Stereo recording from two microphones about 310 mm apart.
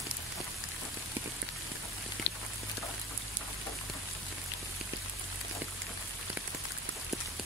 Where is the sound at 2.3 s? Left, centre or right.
Left.